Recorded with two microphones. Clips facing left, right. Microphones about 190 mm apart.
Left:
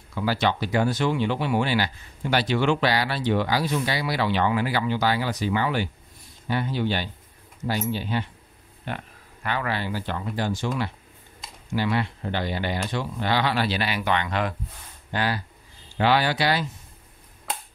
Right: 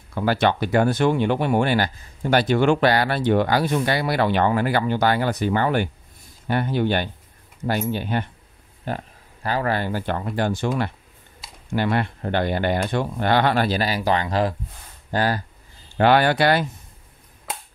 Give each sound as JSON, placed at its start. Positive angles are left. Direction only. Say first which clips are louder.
{"t": 0.1, "sound": "speech", "louder": "right 4 dB", "side_deg": -55}
{"t": 8.8, "sound": "speech", "louder": "right 5 dB", "side_deg": -35}
{"t": 16.0, "sound": "speech", "louder": "right 5 dB", "side_deg": -55}